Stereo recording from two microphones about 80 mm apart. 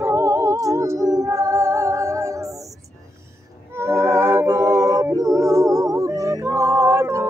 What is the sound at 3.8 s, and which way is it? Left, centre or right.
Music, right.